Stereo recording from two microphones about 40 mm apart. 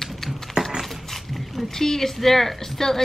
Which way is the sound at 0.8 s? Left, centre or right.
Centre.